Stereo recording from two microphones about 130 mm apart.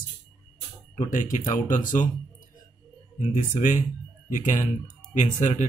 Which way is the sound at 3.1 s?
75° left (ahead or behind).